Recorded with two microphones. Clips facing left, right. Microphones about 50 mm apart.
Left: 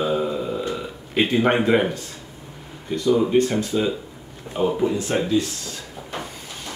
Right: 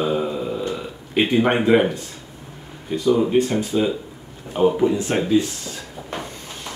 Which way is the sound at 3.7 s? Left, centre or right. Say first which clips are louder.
Right 3 dB; right.